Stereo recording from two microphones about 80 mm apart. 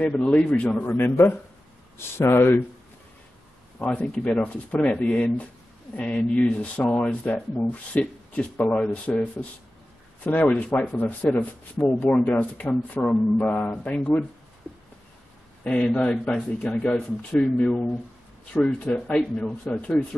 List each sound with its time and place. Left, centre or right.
0.1 s speech: centre; by 2.6 s left
3.8 s speech: centre
15.6 s speech: centre